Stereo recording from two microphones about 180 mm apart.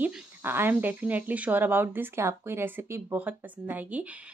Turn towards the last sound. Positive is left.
turn(degrees=-10)  # may be behind; listen again after turning